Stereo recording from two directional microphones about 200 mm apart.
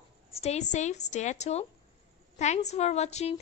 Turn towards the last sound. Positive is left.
turn(degrees=35)  # may be behind; listen again after turning